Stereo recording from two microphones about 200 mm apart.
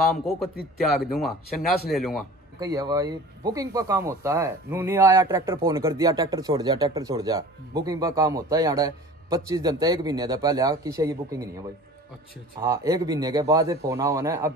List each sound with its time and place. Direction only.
0.6 s a man's voice: 50° left (ahead or behind)
1.2 s speech: centre (ahead or behind)
2.6 s speech: 15° right (ahead or behind)
12.6 s speech: 15° right (ahead or behind)